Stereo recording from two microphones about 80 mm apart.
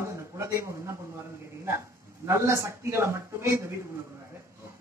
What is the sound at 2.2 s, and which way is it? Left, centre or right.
A man's voice, right.